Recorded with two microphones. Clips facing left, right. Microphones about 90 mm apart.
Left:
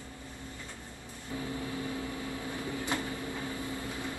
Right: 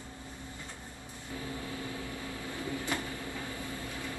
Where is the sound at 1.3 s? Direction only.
25° left (ahead or behind).